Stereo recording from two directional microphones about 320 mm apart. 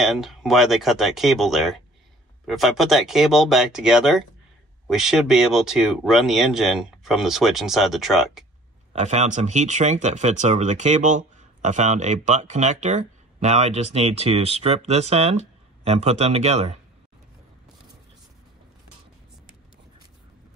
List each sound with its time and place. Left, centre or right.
0.0 s speech: centre
8.9 s speech: right